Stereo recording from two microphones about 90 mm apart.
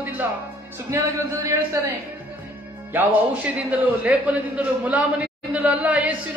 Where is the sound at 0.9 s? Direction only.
30° right (ahead or behind).